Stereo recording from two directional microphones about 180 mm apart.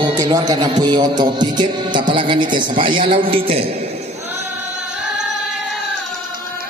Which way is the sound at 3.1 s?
30° right (ahead or behind).